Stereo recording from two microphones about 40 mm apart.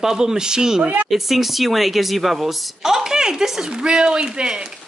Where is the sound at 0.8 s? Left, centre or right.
Right.